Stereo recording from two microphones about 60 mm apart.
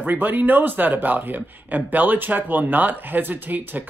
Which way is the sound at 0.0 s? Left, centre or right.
Right.